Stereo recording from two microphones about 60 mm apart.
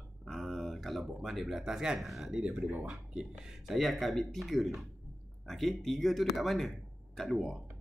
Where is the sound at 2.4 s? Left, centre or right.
Centre.